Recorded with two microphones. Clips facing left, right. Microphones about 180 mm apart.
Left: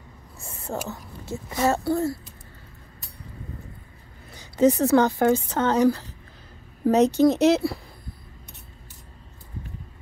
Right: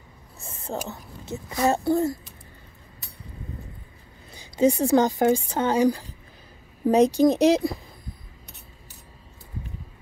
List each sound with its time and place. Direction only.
0.5 s whispering: 20° right (ahead or behind)
1.6 s speech: 20° right (ahead or behind)
4.3 s a woman's voice: 10° right (ahead or behind)